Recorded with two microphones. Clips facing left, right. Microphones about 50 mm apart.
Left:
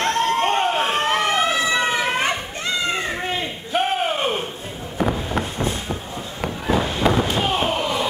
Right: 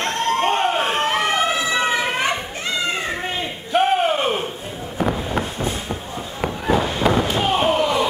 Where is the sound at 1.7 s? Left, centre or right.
Centre.